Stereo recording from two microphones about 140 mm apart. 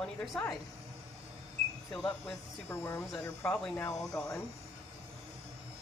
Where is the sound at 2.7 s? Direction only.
15° left (ahead or behind).